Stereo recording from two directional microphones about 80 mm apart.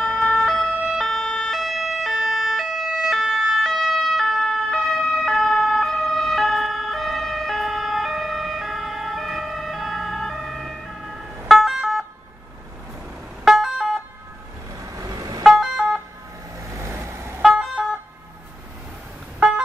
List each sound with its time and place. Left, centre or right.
0.0 s emergency vehicle: centre
0.8 s ambulance: centre
13.4 s siren: centre
15.0 s vehicle: right
15.4 s emergency vehicle: centre
16.7 s vehicle: right
17.4 s vehicle: centre